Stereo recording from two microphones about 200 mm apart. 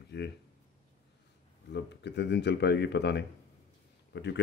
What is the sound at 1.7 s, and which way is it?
Speech, 60° left (ahead or behind).